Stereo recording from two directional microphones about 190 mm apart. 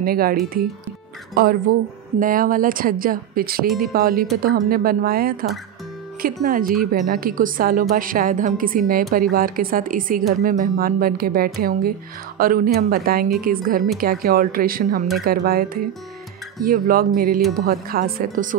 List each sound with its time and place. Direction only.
0.0 s a woman's voice: 50° right (ahead or behind)